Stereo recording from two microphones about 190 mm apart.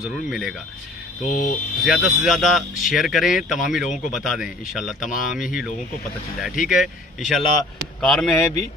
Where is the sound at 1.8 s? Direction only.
Centre (ahead or behind).